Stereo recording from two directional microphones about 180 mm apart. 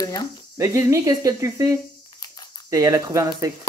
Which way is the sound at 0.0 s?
25° left (ahead or behind).